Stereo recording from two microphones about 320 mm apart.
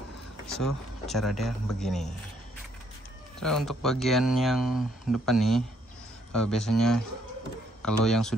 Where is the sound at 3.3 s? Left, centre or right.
Centre.